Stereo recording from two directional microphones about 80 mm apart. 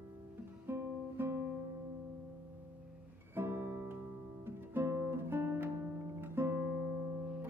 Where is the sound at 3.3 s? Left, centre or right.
Right.